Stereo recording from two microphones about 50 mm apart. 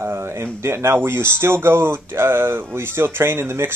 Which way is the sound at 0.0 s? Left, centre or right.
Right.